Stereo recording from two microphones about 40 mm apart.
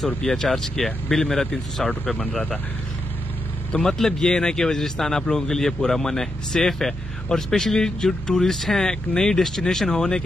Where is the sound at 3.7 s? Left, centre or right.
Centre.